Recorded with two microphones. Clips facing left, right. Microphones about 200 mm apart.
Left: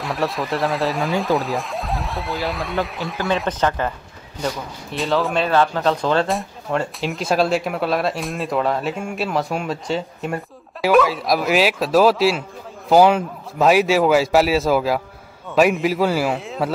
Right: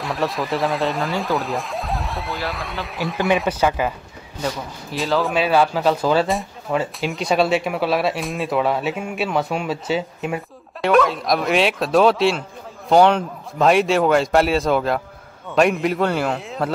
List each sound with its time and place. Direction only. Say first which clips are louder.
0.0 s speech: even; centre (ahead or behind)